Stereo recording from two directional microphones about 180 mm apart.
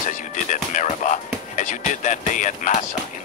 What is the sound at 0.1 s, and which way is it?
Speech, 45° left (ahead or behind).